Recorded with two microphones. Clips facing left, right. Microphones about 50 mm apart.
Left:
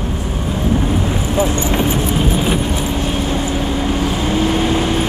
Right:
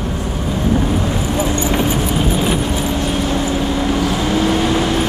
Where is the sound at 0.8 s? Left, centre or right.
Centre.